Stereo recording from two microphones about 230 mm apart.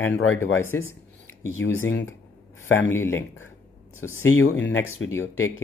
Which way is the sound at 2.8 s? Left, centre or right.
Centre.